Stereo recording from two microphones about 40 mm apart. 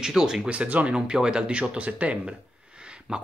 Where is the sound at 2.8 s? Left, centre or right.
Right.